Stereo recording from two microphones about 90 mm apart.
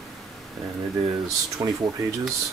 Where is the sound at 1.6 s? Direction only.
45° right (ahead or behind).